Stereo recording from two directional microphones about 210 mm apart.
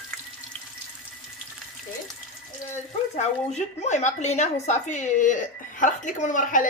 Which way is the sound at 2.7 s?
35° left (ahead or behind).